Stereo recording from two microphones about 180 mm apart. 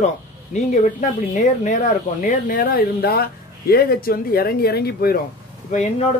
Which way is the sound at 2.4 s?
50° left (ahead or behind).